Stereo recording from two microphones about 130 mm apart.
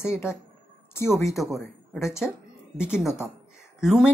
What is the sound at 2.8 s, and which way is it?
Speech, 20° left (ahead or behind).